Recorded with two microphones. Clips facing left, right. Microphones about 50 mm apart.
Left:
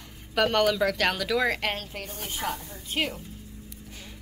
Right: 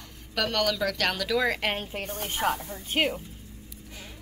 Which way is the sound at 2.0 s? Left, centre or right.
Right.